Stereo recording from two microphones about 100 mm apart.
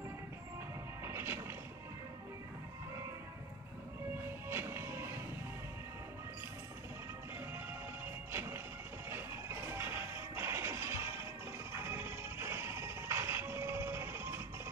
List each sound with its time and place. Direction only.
1.0 s music: 25° right (ahead or behind)
4.5 s music: 25° right (ahead or behind)
8.3 s music: 25° right (ahead or behind)